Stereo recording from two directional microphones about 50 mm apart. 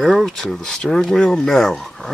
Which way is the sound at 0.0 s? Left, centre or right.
Centre.